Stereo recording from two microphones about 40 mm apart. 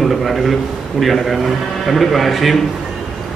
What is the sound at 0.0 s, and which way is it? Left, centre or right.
A man's voice, centre.